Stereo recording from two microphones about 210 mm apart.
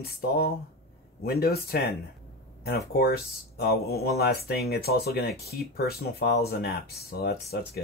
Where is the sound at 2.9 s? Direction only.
45° left (ahead or behind).